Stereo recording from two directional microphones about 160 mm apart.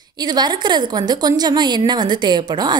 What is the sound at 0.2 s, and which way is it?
A woman's voice, 25° right (ahead or behind).